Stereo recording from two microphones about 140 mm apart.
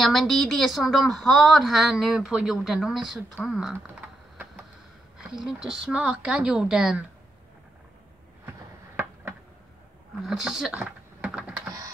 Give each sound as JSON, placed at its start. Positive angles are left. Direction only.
{"t": 0.0, "sound": "a woman's voice", "side_deg": 0}
{"t": 5.3, "sound": "a woman's voice", "side_deg": -5}
{"t": 8.5, "sound": "a sound", "side_deg": -15}
{"t": 10.2, "sound": "speech", "side_deg": -5}